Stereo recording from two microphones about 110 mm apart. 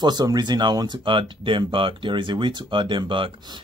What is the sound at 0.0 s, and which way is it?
Speech, 40° right (ahead or behind).